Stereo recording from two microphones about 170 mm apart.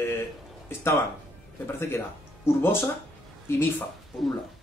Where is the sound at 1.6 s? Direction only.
15° left (ahead or behind).